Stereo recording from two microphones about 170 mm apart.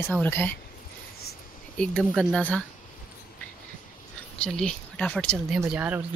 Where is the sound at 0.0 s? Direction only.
10° left (ahead or behind).